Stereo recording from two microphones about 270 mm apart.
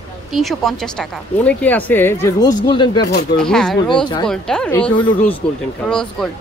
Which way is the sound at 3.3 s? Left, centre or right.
Centre.